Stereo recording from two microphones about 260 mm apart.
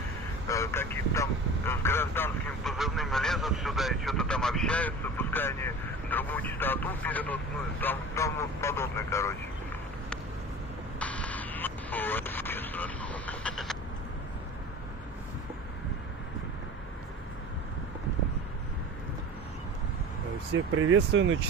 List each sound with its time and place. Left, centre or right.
0.5 s vehicle: centre
7.8 s speech: centre
11.0 s vehicle: centre
20.7 s speech: right